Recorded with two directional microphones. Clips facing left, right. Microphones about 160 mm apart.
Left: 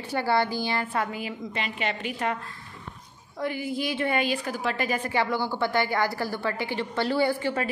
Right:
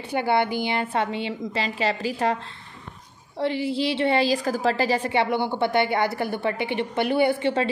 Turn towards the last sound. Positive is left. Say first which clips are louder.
# right 4 dB
turn(degrees=-25)  # may be behind; listen again after turning